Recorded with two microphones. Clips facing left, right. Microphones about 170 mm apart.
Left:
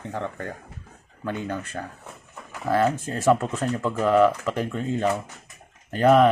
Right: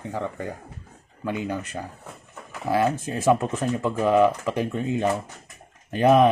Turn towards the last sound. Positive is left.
turn(degrees=-15)  # may be behind; listen again after turning